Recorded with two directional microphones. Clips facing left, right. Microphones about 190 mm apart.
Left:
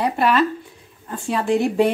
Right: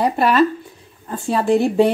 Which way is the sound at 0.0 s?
40° right (ahead or behind).